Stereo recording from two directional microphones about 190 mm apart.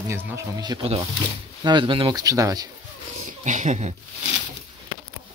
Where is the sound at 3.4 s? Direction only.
40° right (ahead or behind).